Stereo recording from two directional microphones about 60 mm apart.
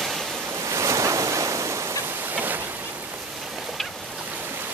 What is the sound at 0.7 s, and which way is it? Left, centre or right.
Waves, right.